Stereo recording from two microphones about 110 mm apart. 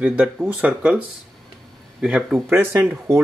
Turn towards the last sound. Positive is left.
turn(degrees=-20)  # may be behind; listen again after turning